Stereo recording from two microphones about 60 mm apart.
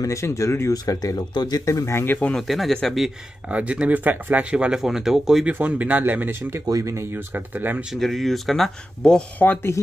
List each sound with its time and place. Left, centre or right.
0.0 s speech: left
0.8 s speech: left
1.9 s speech: left
2.3 s speech: centre
3.4 s speech: right
4.7 s speech: centre
5.5 s speech: right
6.6 s speech: right
7.2 s speech: right
7.9 s speech: centre
9.4 s speech: left